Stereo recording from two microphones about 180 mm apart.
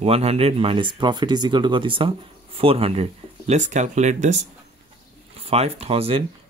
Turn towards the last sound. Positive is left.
turn(degrees=-35)  # may be behind; listen again after turning